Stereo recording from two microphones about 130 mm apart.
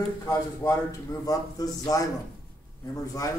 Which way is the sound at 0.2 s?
25° left (ahead or behind).